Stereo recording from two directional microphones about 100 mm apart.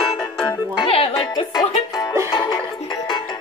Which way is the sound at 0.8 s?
70° left (ahead or behind).